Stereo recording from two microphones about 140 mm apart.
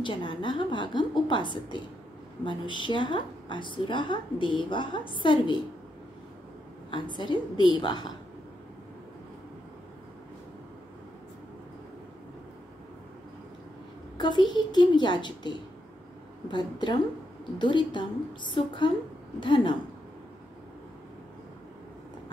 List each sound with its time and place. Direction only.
0.0 s a woman's voice: 35° left (ahead or behind)
6.9 s a woman's voice: 35° left (ahead or behind)
14.1 s a child's voice: 30° left (ahead or behind)